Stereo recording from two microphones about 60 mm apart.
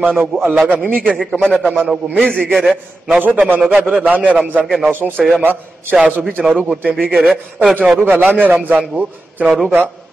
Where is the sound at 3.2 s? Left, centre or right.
Right.